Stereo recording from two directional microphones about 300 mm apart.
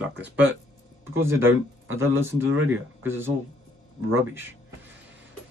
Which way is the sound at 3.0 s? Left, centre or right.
Centre.